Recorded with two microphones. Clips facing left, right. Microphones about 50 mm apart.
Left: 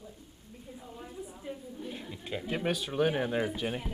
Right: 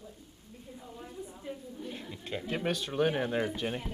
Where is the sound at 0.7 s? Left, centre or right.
Centre.